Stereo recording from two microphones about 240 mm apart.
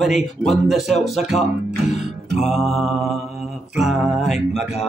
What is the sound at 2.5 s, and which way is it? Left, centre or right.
Speech, centre.